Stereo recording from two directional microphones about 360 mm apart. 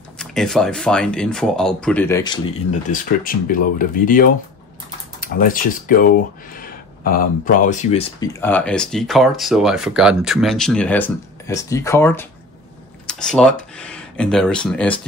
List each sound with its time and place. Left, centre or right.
0.2 s speech: centre; by 6.0 s left
7.1 s speech: left; by 15.0 s centre